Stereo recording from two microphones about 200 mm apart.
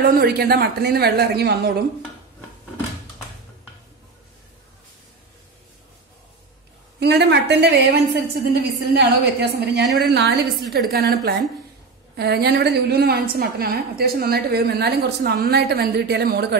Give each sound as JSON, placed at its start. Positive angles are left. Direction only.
{"t": 0.0, "sound": "a woman's voice", "side_deg": -45}
{"t": 7.0, "sound": "a woman's voice", "side_deg": -55}
{"t": 12.2, "sound": "a woman's voice", "side_deg": -55}